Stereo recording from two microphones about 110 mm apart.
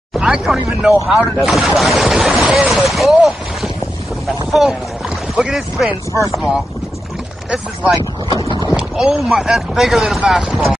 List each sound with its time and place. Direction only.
0.2 s speech: 5° right (ahead or behind)
4.5 s boat: 5° right (ahead or behind)
5.3 s speech: 5° right (ahead or behind)
7.9 s speech: 40° left (ahead or behind)
8.7 s speech: 5° right (ahead or behind)